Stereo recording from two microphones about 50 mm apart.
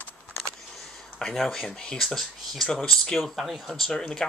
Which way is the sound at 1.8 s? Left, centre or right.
Centre.